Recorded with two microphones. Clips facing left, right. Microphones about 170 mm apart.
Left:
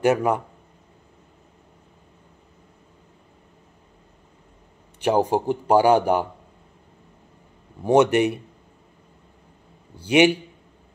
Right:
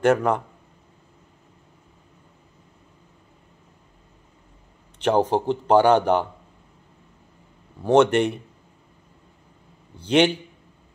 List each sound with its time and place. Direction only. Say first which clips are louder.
0.0 s a man's voice: even; 10° left (ahead or behind)
4.9 s a man's voice: even; 10° left (ahead or behind)
7.8 s a man's voice: even; 10° left (ahead or behind)
9.9 s a man's voice: left 2 dB; 10° left (ahead or behind)